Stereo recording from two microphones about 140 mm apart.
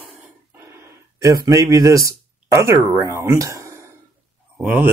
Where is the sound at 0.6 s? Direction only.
20° right (ahead or behind).